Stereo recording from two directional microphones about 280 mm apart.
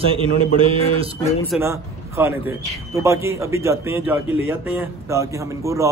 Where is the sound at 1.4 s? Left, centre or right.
Centre.